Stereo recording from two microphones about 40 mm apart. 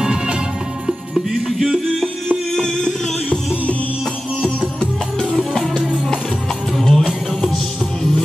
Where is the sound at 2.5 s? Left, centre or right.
Centre.